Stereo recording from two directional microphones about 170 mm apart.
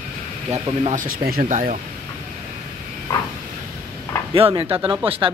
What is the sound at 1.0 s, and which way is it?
Speech, 60° right (ahead or behind).